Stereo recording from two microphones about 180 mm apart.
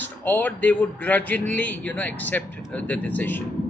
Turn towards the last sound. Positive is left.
turn(degrees=10)  # may be behind; listen again after turning